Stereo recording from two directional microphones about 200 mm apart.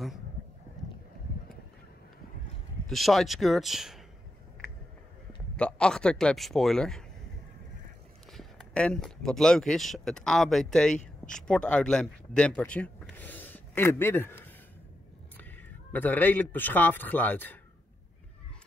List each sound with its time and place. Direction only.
2.9 s a man's voice: centre (ahead or behind)
5.6 s a man's voice: 5° left (ahead or behind)
8.3 s speech: centre (ahead or behind)
11.0 s speech: 40° left (ahead or behind)
11.4 s speech: 5° left (ahead or behind)